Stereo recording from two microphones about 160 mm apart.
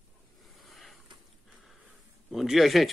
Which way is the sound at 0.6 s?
Centre (ahead or behind).